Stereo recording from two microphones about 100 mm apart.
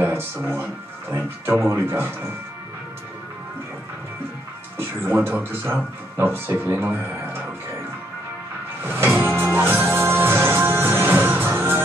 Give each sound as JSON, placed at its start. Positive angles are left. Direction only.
{"t": 0.0, "sound": "speech", "side_deg": -25}
{"t": 4.7, "sound": "speech", "side_deg": -25}
{"t": 8.8, "sound": "speech", "side_deg": -25}
{"t": 9.4, "sound": "music", "side_deg": -25}